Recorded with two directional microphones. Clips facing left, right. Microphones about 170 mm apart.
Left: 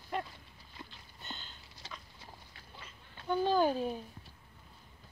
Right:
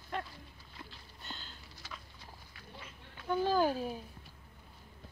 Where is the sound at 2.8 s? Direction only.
5° right (ahead or behind).